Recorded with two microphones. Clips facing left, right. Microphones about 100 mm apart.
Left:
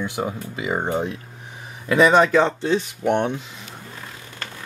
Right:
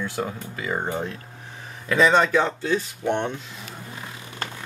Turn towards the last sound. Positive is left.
turn(degrees=15)  # may be behind; listen again after turning